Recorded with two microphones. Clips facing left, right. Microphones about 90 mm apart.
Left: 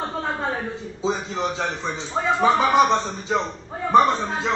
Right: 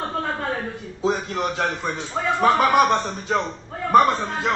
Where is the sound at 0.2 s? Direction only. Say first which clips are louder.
Even; 15° left (ahead or behind).